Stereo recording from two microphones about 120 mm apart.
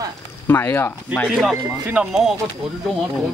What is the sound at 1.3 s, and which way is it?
A woman's voice, centre (ahead or behind).